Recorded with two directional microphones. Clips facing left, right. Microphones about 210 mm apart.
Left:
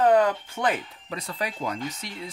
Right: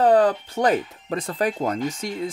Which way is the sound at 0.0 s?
35° right (ahead or behind).